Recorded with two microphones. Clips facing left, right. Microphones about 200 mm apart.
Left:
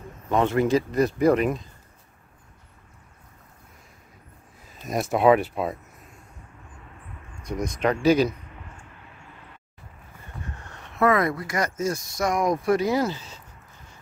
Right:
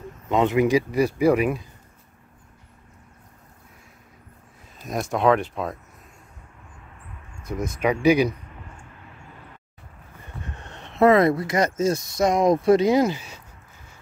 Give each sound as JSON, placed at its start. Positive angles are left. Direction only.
{"t": 0.3, "sound": "speech", "side_deg": -15}
{"t": 4.6, "sound": "speech", "side_deg": 0}
{"t": 7.4, "sound": "speech", "side_deg": -5}
{"t": 10.6, "sound": "speech", "side_deg": -25}